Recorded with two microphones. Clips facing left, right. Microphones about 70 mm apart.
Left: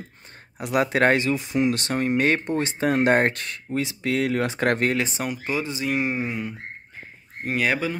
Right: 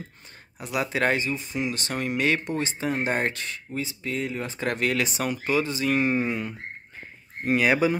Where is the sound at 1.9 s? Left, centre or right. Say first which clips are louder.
Even; left.